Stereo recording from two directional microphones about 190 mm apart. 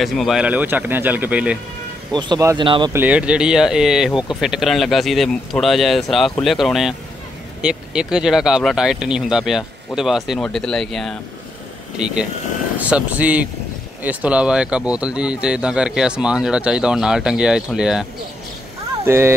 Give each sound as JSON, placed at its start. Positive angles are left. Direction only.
{"t": 0.0, "sound": "speech", "side_deg": 0}
{"t": 2.1, "sound": "speech", "side_deg": -20}
{"t": 2.9, "sound": "speech", "side_deg": -10}
{"t": 12.7, "sound": "speech", "side_deg": -5}
{"t": 19.0, "sound": "speech", "side_deg": -15}